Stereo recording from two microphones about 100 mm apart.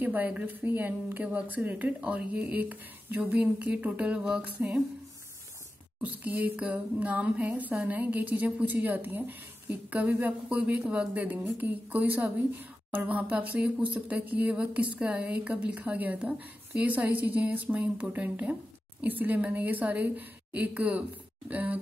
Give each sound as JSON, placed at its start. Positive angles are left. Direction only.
{"t": 0.0, "sound": "speech", "side_deg": -15}
{"t": 5.9, "sound": "speech", "side_deg": -15}